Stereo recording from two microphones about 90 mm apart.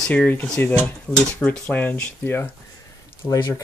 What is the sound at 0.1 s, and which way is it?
Speech, 15° left (ahead or behind).